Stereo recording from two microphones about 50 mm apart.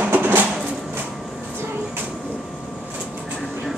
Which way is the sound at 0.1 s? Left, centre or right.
Right.